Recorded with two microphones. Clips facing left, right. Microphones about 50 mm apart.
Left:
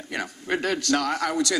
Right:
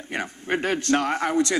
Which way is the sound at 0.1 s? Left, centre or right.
Right.